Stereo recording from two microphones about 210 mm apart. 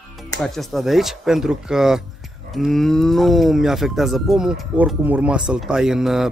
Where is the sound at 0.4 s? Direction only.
Centre (ahead or behind).